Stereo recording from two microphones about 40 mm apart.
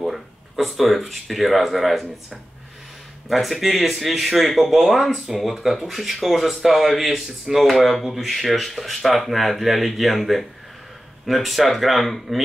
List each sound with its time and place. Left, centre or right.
0.0 s speech: centre
3.3 s speech: centre